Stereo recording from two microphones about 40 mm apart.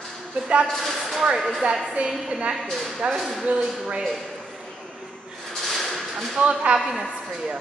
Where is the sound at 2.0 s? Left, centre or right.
Right.